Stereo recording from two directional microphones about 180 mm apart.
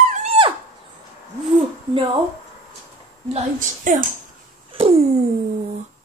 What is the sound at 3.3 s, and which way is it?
Speech, 45° right (ahead or behind).